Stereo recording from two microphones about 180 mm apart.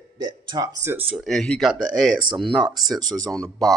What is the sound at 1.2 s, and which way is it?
Speech, 5° left (ahead or behind).